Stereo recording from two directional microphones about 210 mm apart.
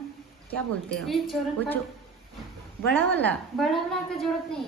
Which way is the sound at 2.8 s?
10° left (ahead or behind).